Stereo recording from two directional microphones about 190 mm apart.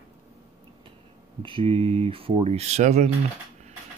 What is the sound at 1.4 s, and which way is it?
Speech, 30° right (ahead or behind).